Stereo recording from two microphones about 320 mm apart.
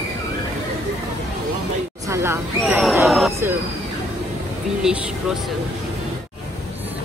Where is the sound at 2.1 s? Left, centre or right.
Centre.